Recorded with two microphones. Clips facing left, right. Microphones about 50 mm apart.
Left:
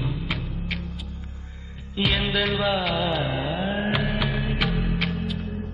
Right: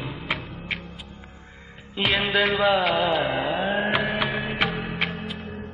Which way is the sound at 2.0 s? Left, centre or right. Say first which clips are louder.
Right 2 dB; right.